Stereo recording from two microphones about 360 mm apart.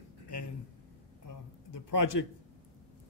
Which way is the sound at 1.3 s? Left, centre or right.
Left.